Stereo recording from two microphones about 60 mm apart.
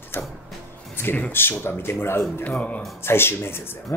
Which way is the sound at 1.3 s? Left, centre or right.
Left.